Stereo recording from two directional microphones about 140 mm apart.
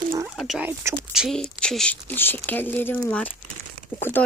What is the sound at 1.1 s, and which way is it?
Speech, 5° right (ahead or behind).